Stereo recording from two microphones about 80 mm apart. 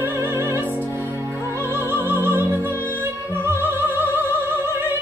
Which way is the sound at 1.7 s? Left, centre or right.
Right.